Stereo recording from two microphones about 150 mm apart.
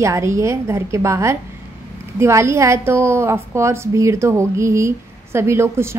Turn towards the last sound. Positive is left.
turn(degrees=-15)  # may be behind; listen again after turning